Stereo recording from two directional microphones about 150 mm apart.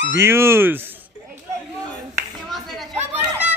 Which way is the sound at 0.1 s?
15° right (ahead or behind).